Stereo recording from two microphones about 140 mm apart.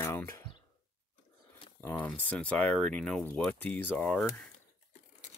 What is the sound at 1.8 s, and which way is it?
Speech, 10° left (ahead or behind).